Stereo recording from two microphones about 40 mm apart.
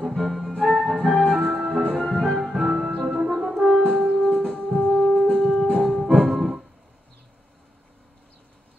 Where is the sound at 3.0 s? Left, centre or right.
Centre.